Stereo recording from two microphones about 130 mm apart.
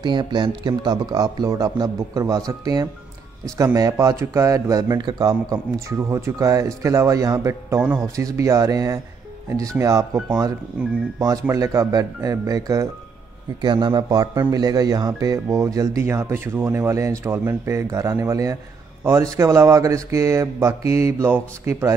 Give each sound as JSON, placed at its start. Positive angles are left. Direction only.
{"t": 0.0, "sound": "a man's voice", "side_deg": -35}